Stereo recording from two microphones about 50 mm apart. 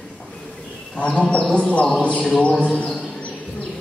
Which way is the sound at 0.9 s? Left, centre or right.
Left.